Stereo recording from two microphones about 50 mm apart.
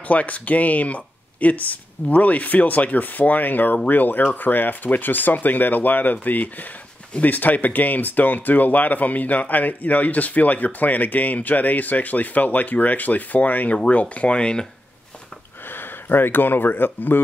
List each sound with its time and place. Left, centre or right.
0.1 s speech: left
15.7 s speech: left